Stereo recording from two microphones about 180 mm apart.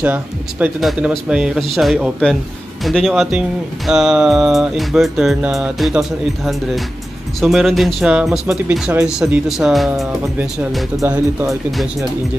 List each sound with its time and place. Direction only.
0.0 s speech: 10° right (ahead or behind)
11.0 s speech: 15° right (ahead or behind)
11.7 s speech: centre (ahead or behind)